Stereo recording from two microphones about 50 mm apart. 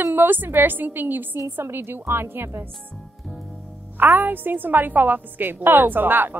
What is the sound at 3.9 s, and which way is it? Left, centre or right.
Speech, right.